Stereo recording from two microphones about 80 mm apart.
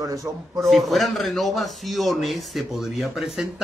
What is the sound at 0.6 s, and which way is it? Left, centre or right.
Speech, centre.